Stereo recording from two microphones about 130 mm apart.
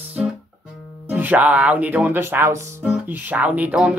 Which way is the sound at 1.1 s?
15° right (ahead or behind).